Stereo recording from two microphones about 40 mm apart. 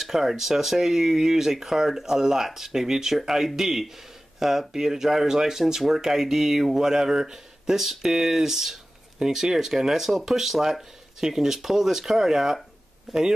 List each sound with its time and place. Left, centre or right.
0.0 s speech: centre